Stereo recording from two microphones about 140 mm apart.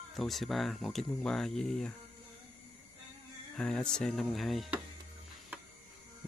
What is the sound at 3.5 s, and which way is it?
Speech, 5° left (ahead or behind).